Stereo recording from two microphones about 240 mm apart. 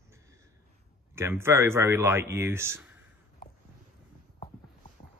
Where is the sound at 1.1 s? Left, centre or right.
Centre.